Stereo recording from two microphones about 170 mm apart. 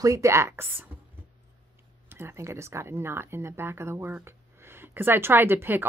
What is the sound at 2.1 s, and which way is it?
Speech, 15° right (ahead or behind).